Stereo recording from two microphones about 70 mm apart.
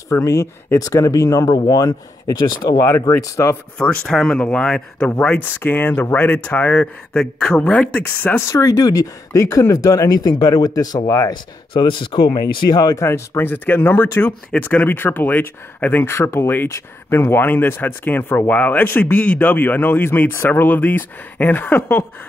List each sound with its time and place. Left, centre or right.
0.1 s speech: left
1.5 s speech: left
2.8 s speech: left
3.7 s speech: centre
5.4 s speech: left
8.4 s speech: left
12.4 s speech: left
12.9 s speech: left
13.4 s speech: left
16.1 s speech: left